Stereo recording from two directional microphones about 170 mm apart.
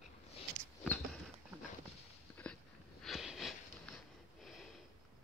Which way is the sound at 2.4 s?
10° left (ahead or behind).